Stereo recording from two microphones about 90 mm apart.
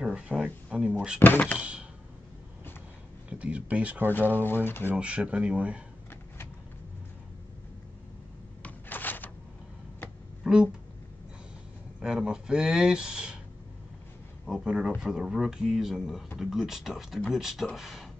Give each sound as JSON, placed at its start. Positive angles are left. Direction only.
{"t": 0.0, "sound": "speech", "side_deg": -10}
{"t": 1.2, "sound": "speech", "side_deg": 20}
{"t": 1.6, "sound": "a sound", "side_deg": -10}
{"t": 3.3, "sound": "speech", "side_deg": -15}
{"t": 4.4, "sound": "speech", "side_deg": 25}
{"t": 4.9, "sound": "speech", "side_deg": -15}
{"t": 8.6, "sound": "cupboard open or close", "side_deg": 20}
{"t": 10.4, "sound": "a sound", "side_deg": -10}
{"t": 12.0, "sound": "speech", "side_deg": -10}
{"t": 14.4, "sound": "speech", "side_deg": -5}